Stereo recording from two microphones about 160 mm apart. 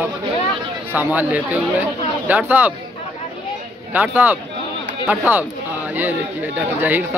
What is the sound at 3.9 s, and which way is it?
Speech, 10° right (ahead or behind).